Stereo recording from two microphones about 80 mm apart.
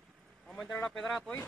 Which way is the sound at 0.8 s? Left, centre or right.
Centre.